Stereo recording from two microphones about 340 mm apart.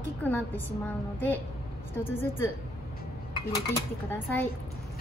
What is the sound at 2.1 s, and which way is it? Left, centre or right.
Speech, centre.